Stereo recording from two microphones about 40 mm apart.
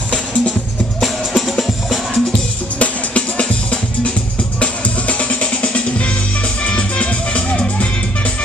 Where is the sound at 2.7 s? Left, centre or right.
Left.